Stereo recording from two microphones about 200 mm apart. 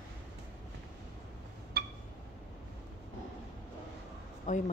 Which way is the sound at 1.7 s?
50° right (ahead or behind).